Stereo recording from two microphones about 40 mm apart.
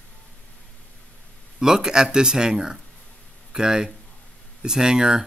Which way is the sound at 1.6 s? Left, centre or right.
Centre.